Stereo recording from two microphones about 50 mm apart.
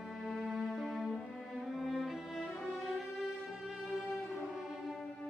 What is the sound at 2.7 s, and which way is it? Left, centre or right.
Music, centre.